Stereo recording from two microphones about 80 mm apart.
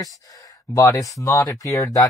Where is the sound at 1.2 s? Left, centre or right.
Left.